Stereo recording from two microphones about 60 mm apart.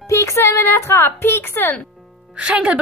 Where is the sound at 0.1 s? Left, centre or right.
Left.